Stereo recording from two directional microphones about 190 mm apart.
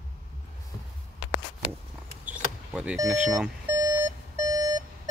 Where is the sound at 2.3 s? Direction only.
5° right (ahead or behind).